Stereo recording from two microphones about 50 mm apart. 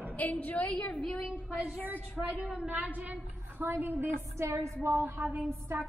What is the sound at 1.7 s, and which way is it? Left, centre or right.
Speech, right.